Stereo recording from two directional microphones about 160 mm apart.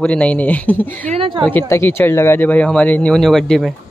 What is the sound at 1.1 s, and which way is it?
Speech, 30° right (ahead or behind).